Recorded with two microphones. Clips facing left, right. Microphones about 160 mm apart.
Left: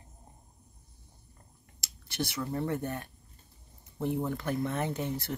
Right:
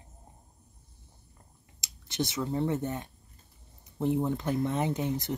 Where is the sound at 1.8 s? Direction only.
20° right (ahead or behind).